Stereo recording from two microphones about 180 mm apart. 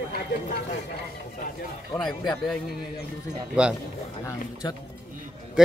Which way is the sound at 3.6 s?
5° right (ahead or behind).